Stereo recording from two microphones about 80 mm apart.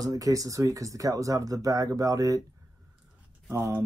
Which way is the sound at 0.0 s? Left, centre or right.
Right.